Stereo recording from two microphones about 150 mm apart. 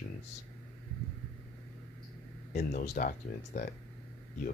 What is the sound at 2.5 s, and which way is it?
Speech, 50° left (ahead or behind).